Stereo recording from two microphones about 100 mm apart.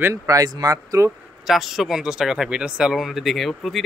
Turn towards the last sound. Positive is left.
turn(degrees=0)  # may be behind; listen again after turning